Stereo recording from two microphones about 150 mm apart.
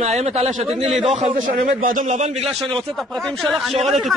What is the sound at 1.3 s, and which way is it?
Speech, 60° right (ahead or behind).